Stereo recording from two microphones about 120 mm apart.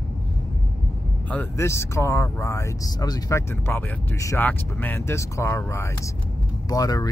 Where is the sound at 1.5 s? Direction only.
25° left (ahead or behind).